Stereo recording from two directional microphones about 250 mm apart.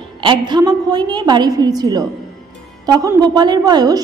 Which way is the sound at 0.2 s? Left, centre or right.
Centre.